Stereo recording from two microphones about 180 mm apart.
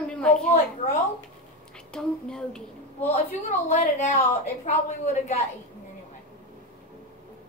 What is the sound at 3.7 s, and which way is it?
A woman's voice, 40° left (ahead or behind).